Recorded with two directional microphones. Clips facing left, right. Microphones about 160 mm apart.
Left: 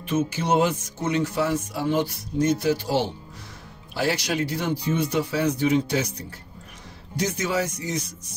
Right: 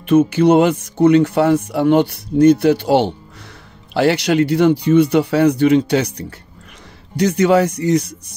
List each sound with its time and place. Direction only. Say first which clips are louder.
0.0 s speech: right 13 dB; 60° right (ahead or behind)